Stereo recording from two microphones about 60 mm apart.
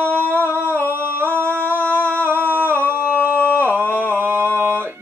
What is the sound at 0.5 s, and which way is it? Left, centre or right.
Humming, right.